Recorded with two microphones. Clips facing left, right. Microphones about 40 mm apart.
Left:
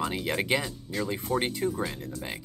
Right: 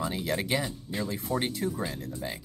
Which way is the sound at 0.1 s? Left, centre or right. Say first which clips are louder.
Left 2 dB; left.